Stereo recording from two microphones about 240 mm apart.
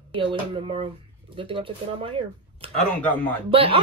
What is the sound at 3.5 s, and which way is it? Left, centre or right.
Speech, right.